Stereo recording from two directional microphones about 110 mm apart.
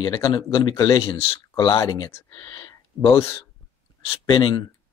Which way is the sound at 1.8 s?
35° left (ahead or behind).